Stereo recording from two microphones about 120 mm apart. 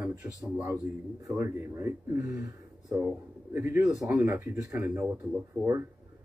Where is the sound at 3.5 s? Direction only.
15° right (ahead or behind).